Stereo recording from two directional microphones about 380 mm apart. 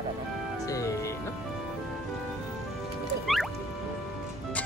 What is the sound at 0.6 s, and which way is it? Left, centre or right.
Music, centre.